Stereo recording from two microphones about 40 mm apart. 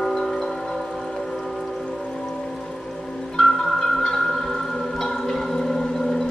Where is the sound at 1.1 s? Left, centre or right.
Centre.